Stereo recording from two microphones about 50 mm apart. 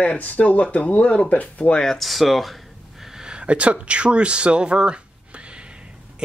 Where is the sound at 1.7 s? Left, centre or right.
Centre.